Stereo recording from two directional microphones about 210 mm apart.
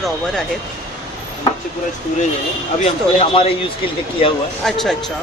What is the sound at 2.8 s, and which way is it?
Speech, 30° left (ahead or behind).